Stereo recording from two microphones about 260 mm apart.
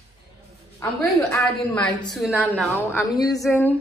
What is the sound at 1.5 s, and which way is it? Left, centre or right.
A woman's voice, centre.